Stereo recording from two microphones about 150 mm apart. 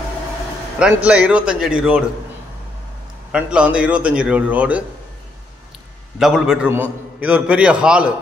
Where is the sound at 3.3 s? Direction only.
5° right (ahead or behind).